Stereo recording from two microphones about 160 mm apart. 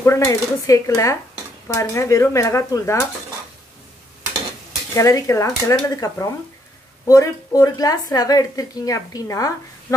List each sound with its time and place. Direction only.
0.0 s a woman's voice: 15° left (ahead or behind)
4.9 s a woman's voice: 20° left (ahead or behind)